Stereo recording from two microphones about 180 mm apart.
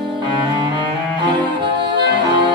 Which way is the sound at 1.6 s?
25° right (ahead or behind).